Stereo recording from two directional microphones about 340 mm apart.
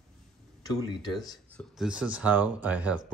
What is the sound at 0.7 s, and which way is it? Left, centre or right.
Speech, centre.